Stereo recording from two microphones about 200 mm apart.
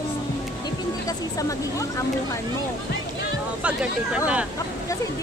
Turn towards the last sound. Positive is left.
turn(degrees=-5)  # may be behind; listen again after turning